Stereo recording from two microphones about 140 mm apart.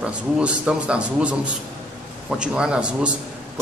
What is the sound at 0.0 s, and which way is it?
A man's voice, 10° right (ahead or behind).